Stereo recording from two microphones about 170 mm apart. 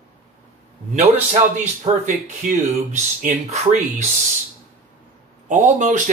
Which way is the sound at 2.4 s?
50° right (ahead or behind).